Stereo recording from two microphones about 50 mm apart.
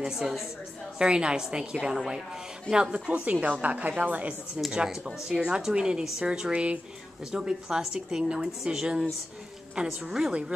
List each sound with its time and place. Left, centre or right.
0.0 s speech: centre
0.9 s speech: centre
2.7 s a woman's voice: right
4.7 s speech: centre
10.0 s a woman's voice: centre